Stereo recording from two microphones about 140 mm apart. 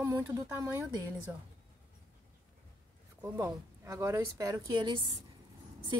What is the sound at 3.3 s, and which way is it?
A woman's voice, 20° right (ahead or behind).